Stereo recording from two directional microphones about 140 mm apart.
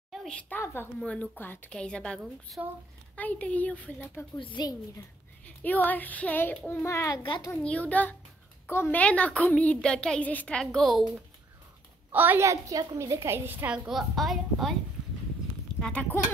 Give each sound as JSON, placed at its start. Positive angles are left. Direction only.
{"t": 0.1, "sound": "a sound", "side_deg": 0}
{"t": 0.5, "sound": "a woman's voice", "side_deg": 15}
{"t": 4.4, "sound": "a woman's voice", "side_deg": 35}
{"t": 5.6, "sound": "a woman's voice", "side_deg": 10}
{"t": 6.8, "sound": "a child's voice", "side_deg": 20}
{"t": 7.2, "sound": "a woman's voice", "side_deg": 35}
{"t": 7.6, "sound": "a woman's voice", "side_deg": 10}
{"t": 12.1, "sound": "a woman's voice", "side_deg": -15}
{"t": 13.8, "sound": "a woman's voice", "side_deg": 0}
{"t": 15.8, "sound": "a woman's voice", "side_deg": 10}